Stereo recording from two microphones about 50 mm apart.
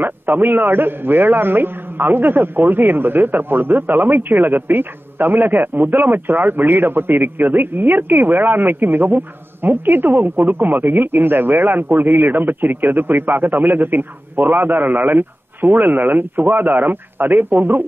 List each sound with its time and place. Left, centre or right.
0.0 s a man's voice: right